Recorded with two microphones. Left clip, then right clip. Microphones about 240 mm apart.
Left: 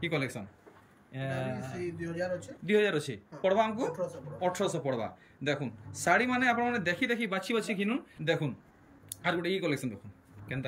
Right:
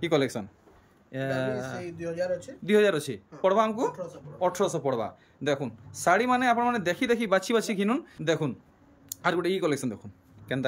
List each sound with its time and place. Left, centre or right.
0.0 s speech: centre